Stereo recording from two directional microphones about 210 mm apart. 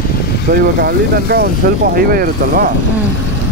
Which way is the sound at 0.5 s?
45° right (ahead or behind).